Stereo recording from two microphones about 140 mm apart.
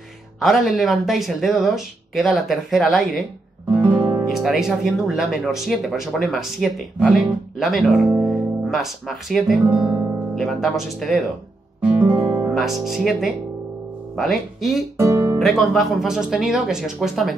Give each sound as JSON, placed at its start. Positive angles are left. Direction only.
{"t": 0.4, "sound": "speech", "side_deg": 0}
{"t": 3.9, "sound": "guitar", "side_deg": -35}
{"t": 4.3, "sound": "speech", "side_deg": -5}
{"t": 11.8, "sound": "music", "side_deg": -10}
{"t": 12.4, "sound": "speech", "side_deg": -5}
{"t": 15.0, "sound": "music", "side_deg": -20}
{"t": 15.3, "sound": "speech", "side_deg": 0}